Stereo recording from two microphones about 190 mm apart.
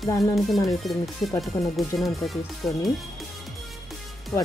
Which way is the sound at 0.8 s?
Centre (ahead or behind).